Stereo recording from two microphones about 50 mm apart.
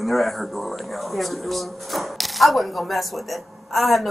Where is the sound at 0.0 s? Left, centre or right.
Centre.